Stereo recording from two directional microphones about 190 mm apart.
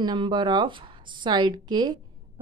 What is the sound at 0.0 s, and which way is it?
A woman's voice, 20° right (ahead or behind).